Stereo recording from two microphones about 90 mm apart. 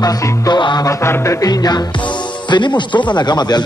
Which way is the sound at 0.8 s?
30° left (ahead or behind).